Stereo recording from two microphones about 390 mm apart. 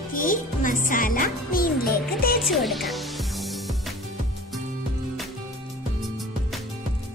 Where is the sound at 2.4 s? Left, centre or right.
Centre.